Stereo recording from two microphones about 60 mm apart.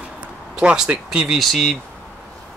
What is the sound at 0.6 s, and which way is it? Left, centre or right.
Speech, centre.